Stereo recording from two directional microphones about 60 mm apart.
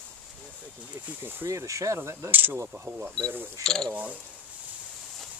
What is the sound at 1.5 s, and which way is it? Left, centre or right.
Speech, right.